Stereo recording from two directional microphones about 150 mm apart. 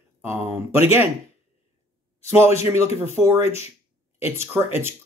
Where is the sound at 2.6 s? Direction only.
15° right (ahead or behind).